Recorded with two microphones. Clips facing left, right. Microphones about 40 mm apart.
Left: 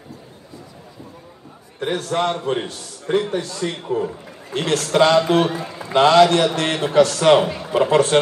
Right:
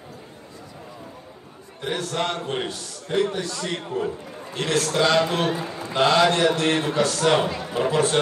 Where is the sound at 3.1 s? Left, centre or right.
Left.